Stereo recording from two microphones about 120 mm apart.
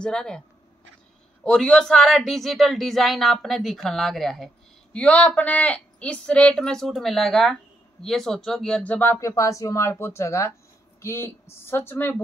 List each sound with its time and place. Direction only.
0.0 s speech: 5° left (ahead or behind)
1.4 s a woman's voice: 5° left (ahead or behind)